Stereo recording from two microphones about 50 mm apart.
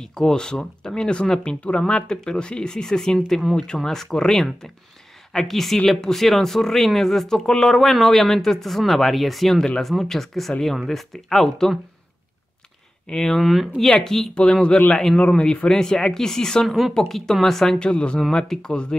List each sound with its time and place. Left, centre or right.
0.2 s speech: centre
3.5 s speech: centre
13.1 s speech: centre
14.3 s speech: centre
16.6 s speech: centre
16.9 s speech: centre
17.7 s speech: centre